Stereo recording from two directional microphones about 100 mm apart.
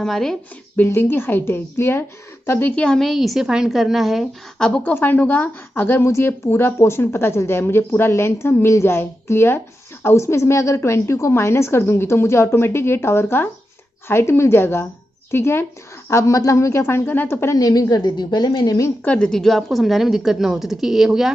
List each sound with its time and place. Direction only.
0.0 s a woman's voice: 5° left (ahead or behind)
0.7 s a woman's voice: 25° left (ahead or behind)
2.7 s a woman's voice: 10° left (ahead or behind)
4.6 s a woman's voice: 10° left (ahead or behind)
17.6 s a woman's voice: 35° left (ahead or behind)
19.0 s a woman's voice: 10° left (ahead or behind)